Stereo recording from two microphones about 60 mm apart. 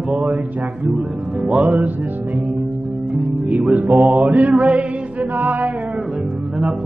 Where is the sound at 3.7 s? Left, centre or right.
Right.